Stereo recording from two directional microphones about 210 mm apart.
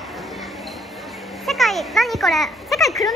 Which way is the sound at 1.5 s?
Centre (ahead or behind).